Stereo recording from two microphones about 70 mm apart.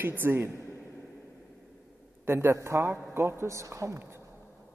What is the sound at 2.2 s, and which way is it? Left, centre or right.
Speech, right.